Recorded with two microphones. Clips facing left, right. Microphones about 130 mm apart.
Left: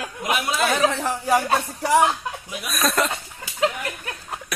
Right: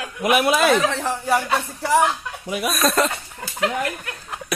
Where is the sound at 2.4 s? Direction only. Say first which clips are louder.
Right 9 dB; 65° right (ahead or behind).